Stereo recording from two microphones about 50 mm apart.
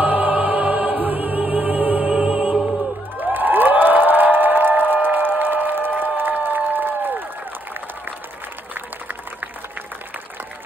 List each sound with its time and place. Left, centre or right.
0.0 s music: right
2.1 s music: centre
3.2 s a sound: right